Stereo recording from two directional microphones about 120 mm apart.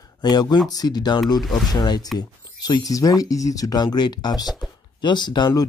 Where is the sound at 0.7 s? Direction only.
35° left (ahead or behind).